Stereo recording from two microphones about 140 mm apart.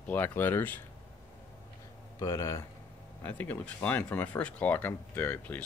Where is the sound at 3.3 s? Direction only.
10° left (ahead or behind).